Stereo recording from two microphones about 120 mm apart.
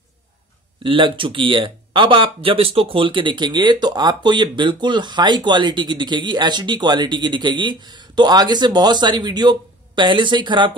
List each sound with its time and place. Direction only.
0.8 s speech: 45° right (ahead or behind)